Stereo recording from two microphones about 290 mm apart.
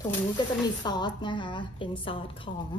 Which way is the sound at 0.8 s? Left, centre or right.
Centre.